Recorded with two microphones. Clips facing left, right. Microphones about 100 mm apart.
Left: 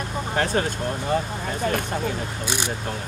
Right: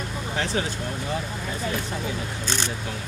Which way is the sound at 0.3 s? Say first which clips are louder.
Left 4 dB; 45° left (ahead or behind).